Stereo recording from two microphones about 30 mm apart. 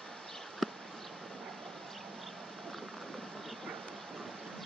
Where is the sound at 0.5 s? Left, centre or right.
Centre.